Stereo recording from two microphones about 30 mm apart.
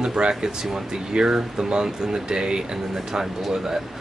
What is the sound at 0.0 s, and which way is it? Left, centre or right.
Speech, right.